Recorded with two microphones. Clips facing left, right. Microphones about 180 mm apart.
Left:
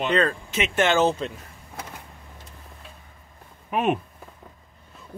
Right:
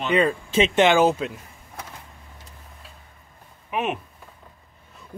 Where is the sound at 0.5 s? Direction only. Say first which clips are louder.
Right 7 dB; 30° right (ahead or behind).